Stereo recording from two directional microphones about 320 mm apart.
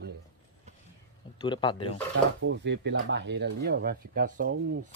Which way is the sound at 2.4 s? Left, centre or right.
Right.